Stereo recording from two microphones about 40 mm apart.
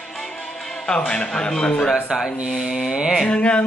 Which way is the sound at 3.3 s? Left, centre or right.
Left.